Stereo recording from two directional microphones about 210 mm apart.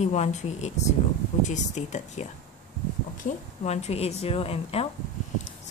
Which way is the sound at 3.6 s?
30° left (ahead or behind).